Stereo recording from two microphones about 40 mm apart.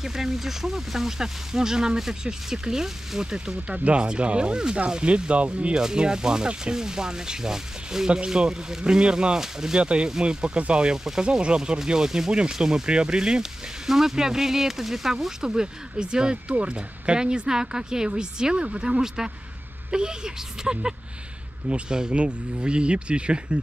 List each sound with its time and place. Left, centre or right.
0.0 s speech: centre; by 5.8 s right
5.8 s speech: centre